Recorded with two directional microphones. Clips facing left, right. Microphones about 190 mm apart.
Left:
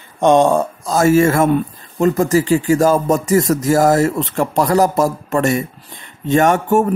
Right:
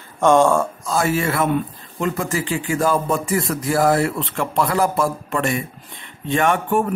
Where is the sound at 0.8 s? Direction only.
40° left (ahead or behind).